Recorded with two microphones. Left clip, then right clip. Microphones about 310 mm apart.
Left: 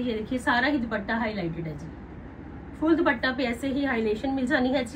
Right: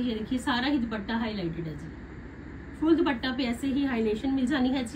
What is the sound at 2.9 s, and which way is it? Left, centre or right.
A woman's voice, centre.